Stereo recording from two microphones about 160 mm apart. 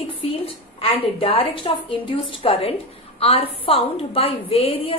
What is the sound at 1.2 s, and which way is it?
A woman's voice, 35° left (ahead or behind).